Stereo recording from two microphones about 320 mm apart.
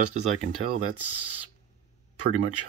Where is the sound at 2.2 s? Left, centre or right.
Right.